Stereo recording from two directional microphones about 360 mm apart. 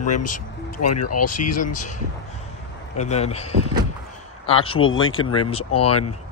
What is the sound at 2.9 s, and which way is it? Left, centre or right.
Speech, centre.